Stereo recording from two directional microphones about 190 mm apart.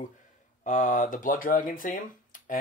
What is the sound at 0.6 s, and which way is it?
Speech, 40° left (ahead or behind).